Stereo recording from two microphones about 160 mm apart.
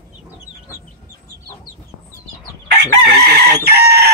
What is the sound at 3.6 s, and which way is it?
Chicken, 90° right.